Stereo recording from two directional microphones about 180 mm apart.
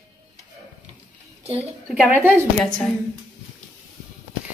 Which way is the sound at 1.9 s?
10° right (ahead or behind).